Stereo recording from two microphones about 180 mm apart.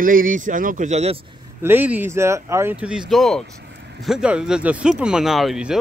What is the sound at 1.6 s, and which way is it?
Speech, 10° right (ahead or behind).